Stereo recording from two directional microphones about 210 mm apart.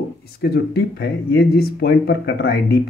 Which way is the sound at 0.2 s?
50° left (ahead or behind).